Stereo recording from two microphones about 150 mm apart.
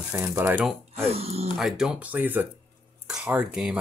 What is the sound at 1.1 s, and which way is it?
Speech, 45° right (ahead or behind).